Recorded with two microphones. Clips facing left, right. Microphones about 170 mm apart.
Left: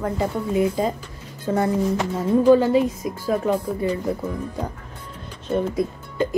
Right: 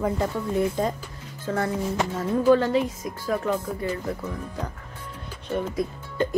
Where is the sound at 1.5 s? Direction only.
20° left (ahead or behind).